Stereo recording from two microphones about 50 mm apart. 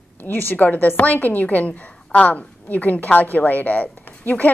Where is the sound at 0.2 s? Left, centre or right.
Left.